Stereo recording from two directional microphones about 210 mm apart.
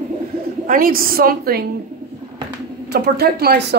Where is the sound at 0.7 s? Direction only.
45° right (ahead or behind).